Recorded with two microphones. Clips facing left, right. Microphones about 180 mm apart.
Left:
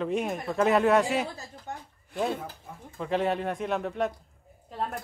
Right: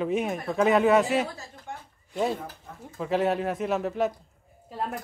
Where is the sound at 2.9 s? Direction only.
Centre (ahead or behind).